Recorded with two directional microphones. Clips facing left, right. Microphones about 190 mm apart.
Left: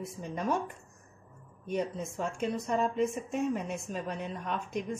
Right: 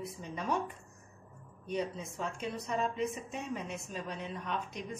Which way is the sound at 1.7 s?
50° left (ahead or behind).